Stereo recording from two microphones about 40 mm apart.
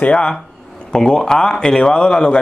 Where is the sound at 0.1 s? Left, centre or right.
Centre.